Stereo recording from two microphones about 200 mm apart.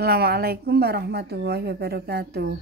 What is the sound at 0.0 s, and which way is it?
Speech, 50° right (ahead or behind).